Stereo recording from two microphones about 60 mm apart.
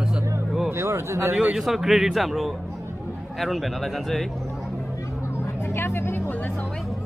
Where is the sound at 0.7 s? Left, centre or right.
Right.